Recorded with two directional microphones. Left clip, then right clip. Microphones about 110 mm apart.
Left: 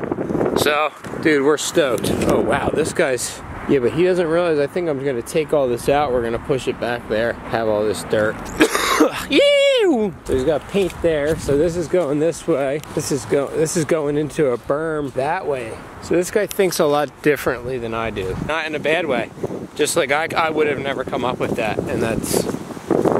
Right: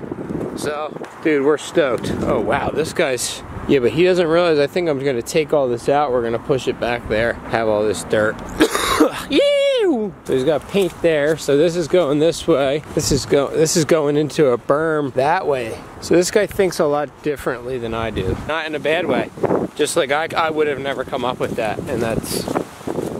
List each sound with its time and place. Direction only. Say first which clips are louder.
0.6 s speech: left 7 dB; 30° left (ahead or behind)
1.8 s speech: even; 15° left (ahead or behind); by 3.2 s 5° right (ahead or behind)
3.6 s speech: right 2 dB; 15° right (ahead or behind)
5.5 s speech: left 1 dB; centre (ahead or behind)
11.1 s speech: right 2 dB; 15° right (ahead or behind); by 16.3 s 45° right (ahead or behind)
16.5 s speech: even; 5° left (ahead or behind)
18.5 s speech: even; 5° left (ahead or behind)